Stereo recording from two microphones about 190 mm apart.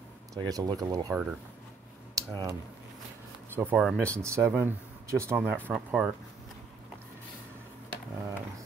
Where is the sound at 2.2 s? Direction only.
20° right (ahead or behind).